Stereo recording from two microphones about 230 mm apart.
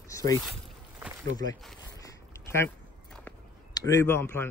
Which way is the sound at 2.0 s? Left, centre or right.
Centre.